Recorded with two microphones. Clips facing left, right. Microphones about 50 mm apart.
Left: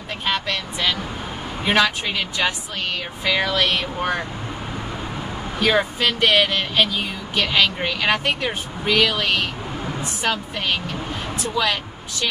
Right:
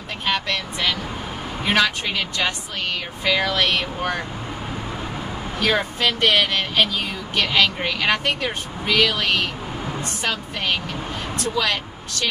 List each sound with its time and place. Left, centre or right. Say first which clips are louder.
0.2 s speech: even; centre
5.6 s a woman's voice: left 2 dB; centre